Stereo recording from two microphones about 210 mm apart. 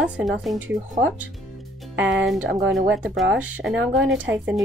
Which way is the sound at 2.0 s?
60° right (ahead or behind).